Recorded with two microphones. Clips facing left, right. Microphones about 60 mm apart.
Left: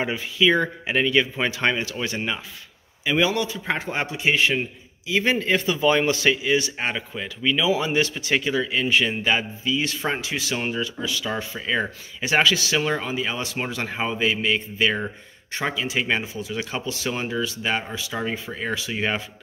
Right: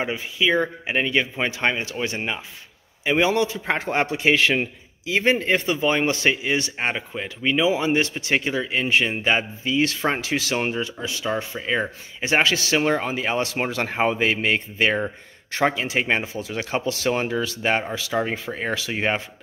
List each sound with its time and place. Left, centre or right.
0.1 s speech: centre
3.0 s a man's voice: right
5.2 s speech: right
9.7 s a man's voice: right
10.5 s speech: right
13.1 s a man's voice: right
16.4 s a man's voice: right
18.1 s speech: right
18.5 s speech: right